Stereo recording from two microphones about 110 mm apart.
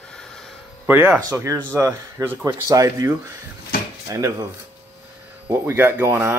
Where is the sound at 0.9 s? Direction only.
15° right (ahead or behind).